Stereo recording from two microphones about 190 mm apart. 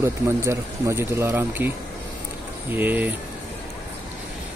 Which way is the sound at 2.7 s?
10° right (ahead or behind).